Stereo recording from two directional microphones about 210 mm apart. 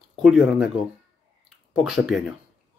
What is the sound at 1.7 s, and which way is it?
Speech, centre (ahead or behind).